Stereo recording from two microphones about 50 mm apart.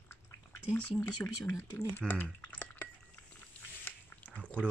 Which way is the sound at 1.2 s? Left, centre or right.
Left.